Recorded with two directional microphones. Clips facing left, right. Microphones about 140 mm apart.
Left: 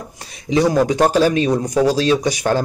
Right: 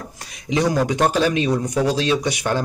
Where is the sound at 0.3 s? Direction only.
35° left (ahead or behind).